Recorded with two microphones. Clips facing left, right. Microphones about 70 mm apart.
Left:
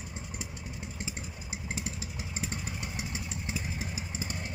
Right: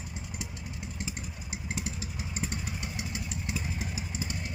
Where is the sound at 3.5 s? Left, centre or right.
Left.